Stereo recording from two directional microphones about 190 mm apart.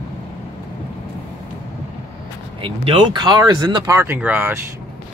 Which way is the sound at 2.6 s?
25° right (ahead or behind).